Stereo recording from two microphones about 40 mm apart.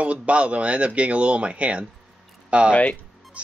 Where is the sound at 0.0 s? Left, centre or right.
Right.